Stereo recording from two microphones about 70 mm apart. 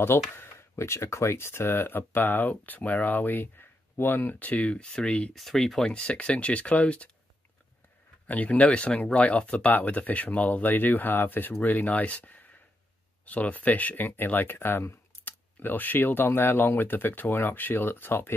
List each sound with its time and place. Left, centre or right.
0.4 s speech: left; by 5.3 s centre
5.3 s speech: centre
8.3 s speech: left